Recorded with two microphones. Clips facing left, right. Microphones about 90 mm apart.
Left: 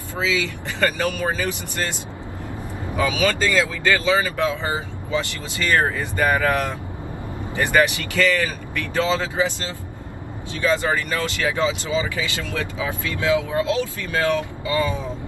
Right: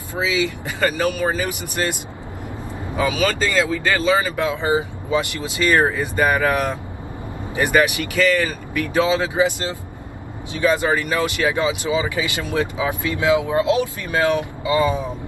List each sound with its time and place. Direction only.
0.1 s speech: 15° right (ahead or behind)
3.2 s speech: centre (ahead or behind)
3.9 s speech: 15° right (ahead or behind)